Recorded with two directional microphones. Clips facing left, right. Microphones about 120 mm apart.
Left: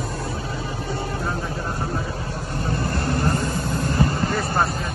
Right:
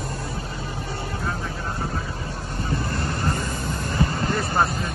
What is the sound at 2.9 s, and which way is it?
Vehicle, 60° left (ahead or behind).